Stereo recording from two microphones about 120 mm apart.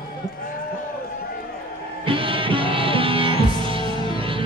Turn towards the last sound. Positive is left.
turn(degrees=-45)  # may be behind; listen again after turning